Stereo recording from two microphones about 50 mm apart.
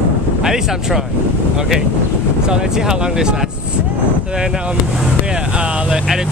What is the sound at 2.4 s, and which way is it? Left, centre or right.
Speech, centre.